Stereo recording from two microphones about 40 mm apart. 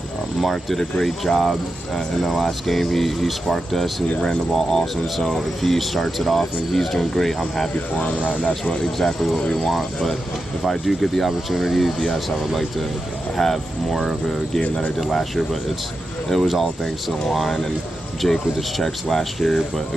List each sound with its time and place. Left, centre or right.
0.4 s speech: centre
4.2 s speech: centre
7.9 s speech: left
8.6 s speech: centre
9.7 s speech: centre
13.4 s speech: centre
16.6 s speech: centre